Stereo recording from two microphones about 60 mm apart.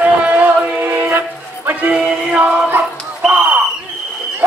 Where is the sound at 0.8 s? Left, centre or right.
Right.